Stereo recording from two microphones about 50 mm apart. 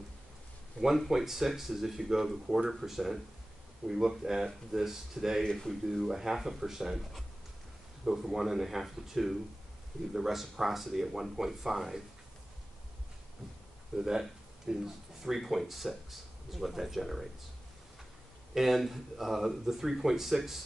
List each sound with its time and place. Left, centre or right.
0.7 s speech: centre
5.4 s speech: centre
6.0 s speech: centre
13.9 s speech: centre
15.2 s speech: centre
18.5 s speech: centre